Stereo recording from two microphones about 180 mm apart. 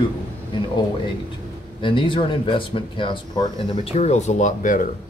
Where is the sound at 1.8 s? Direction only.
30° left (ahead or behind).